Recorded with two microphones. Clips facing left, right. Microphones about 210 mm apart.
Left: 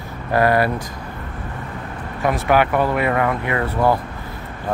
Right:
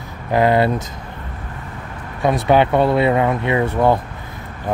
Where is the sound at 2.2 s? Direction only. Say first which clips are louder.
Right 3 dB; 25° right (ahead or behind).